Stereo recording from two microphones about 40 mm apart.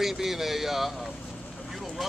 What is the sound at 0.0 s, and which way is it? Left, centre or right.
Speech, centre.